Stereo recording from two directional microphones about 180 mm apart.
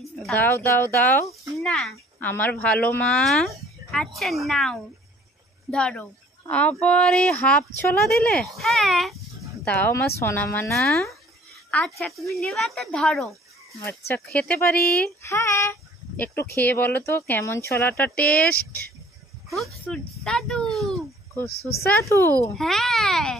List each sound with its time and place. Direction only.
0.0 s speech: 5° left (ahead or behind)
13.7 s speech: 15° left (ahead or behind)
19.5 s a child's voice: centre (ahead or behind)
21.5 s speech: 60° left (ahead or behind)
22.1 s speech: 15° left (ahead or behind)
22.6 s speech: centre (ahead or behind)